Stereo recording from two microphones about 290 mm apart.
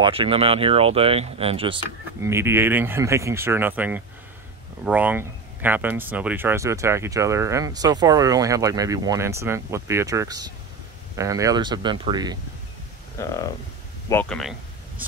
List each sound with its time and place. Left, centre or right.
0.0 s speech: centre
2.2 s speech: centre
13.2 s speech: centre